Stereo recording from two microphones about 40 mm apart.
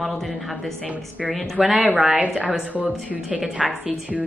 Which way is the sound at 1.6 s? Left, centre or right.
Right.